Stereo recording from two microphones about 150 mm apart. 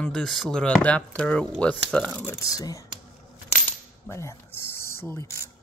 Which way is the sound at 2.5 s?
25° left (ahead or behind).